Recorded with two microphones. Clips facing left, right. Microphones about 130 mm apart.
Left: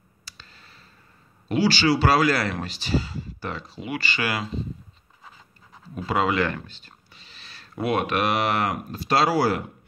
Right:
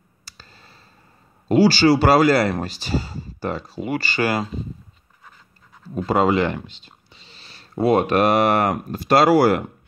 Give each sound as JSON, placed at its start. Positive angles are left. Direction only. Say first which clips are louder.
{"t": 0.2, "sound": "a sound", "louder": "right 2 dB", "side_deg": -40}
{"t": 1.5, "sound": "speech", "louder": "right 6 dB", "side_deg": -40}
{"t": 5.9, "sound": "speech", "louder": "right 5 dB", "side_deg": -35}